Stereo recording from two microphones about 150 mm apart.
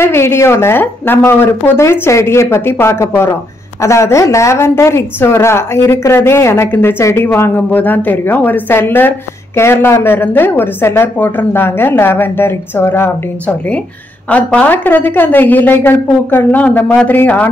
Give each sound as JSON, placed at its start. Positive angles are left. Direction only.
{"t": 0.0, "sound": "a woman's voice", "side_deg": 15}